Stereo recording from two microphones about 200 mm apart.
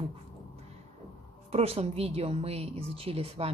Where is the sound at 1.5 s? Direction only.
30° right (ahead or behind).